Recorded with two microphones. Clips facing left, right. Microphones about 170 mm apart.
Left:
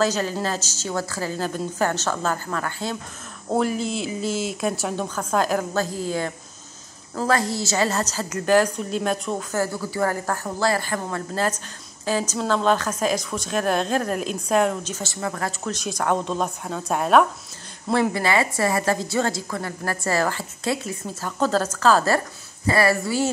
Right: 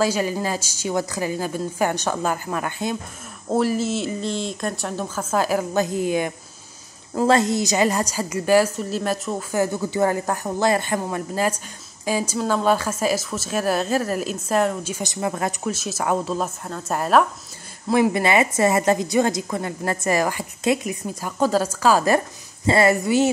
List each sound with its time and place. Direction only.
0.0 s speech: 10° right (ahead or behind)
3.4 s speech: centre (ahead or behind)
5.7 s speech: 20° right (ahead or behind)
9.6 s speech: 20° right (ahead or behind)
15.7 s speech: 5° right (ahead or behind)
17.9 s speech: 15° right (ahead or behind)